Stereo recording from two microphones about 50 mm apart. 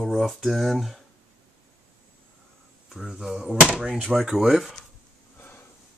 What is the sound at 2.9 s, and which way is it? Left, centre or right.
Speech, centre.